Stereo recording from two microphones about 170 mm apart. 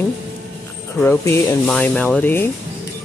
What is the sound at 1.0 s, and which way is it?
Speech, 15° left (ahead or behind).